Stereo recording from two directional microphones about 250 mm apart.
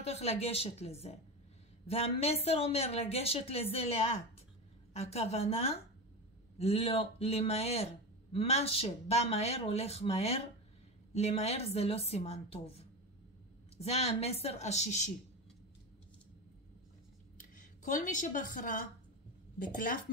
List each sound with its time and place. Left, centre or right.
0.0 s speech: left
17.6 s a woman's voice: left